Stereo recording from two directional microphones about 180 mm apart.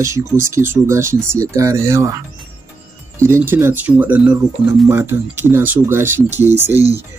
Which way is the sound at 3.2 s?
15° right (ahead or behind).